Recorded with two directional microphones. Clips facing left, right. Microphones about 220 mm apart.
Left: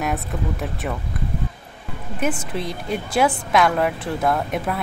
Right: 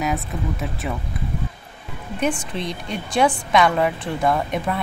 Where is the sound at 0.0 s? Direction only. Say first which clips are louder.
Even; centre (ahead or behind).